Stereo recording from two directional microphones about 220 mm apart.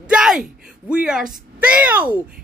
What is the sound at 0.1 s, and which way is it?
Speech, 5° right (ahead or behind).